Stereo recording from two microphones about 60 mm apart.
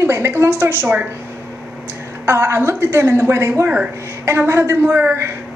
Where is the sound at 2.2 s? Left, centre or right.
Right.